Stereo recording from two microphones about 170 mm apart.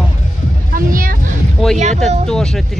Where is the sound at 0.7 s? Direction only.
55° right (ahead or behind).